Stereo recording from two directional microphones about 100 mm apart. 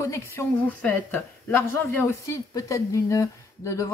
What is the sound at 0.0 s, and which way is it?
A woman's voice, 30° left (ahead or behind).